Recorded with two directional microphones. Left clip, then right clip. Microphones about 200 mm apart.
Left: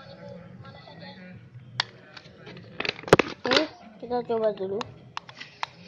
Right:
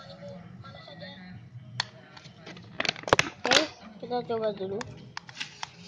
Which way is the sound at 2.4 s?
55° right (ahead or behind).